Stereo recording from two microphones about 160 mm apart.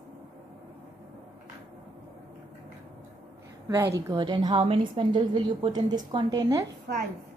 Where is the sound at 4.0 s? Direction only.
25° right (ahead or behind).